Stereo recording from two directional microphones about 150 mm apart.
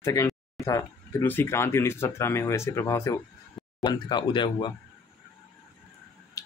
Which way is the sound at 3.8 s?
30° left (ahead or behind).